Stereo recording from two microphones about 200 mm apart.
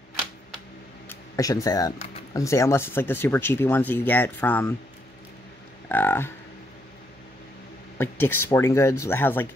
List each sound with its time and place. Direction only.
1.0 s a sound: 15° left (ahead or behind)
2.3 s speech: 15° left (ahead or behind)
5.9 s livestock: 10° left (ahead or behind)
8.0 s speech: 10° left (ahead or behind)